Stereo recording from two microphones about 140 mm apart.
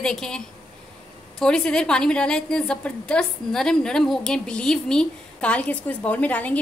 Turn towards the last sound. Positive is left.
turn(degrees=10)  # may be behind; listen again after turning